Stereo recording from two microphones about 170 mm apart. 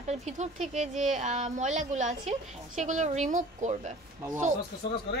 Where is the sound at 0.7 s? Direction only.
45° right (ahead or behind).